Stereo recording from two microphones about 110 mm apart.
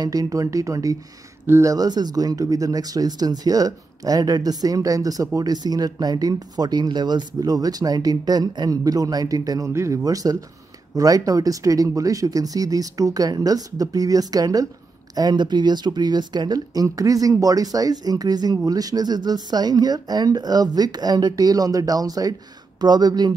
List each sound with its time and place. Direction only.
0.0 s speech: 35° right (ahead or behind)